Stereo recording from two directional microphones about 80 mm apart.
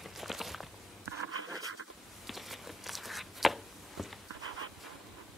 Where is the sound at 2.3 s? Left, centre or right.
Centre.